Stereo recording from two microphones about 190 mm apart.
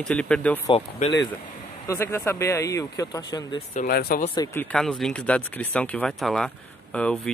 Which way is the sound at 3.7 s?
55° left (ahead or behind).